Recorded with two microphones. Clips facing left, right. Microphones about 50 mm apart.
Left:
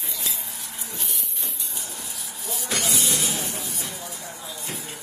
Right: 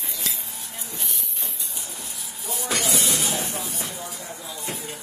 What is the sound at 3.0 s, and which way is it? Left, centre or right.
Music, right.